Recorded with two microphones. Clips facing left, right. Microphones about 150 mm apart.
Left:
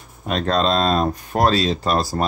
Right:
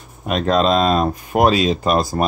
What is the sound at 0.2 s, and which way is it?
Speech, 5° right (ahead or behind).